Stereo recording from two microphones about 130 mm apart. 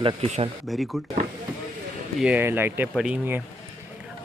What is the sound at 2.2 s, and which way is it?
Speech, 15° right (ahead or behind).